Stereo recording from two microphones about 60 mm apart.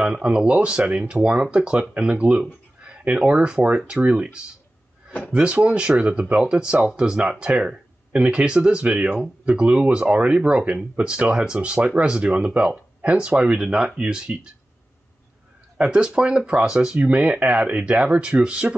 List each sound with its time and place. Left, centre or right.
0.0 s speech: centre
15.8 s speech: centre